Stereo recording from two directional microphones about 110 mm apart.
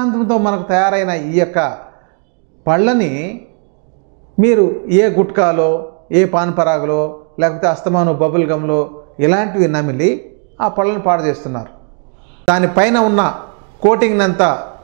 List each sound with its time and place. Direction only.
0.0 s a man's voice: 15° right (ahead or behind)
4.4 s a man's voice: 15° right (ahead or behind)